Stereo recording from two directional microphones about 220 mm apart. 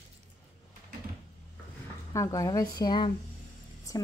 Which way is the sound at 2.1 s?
15° left (ahead or behind).